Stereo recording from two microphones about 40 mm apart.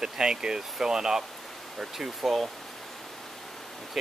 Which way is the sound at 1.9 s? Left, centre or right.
Centre.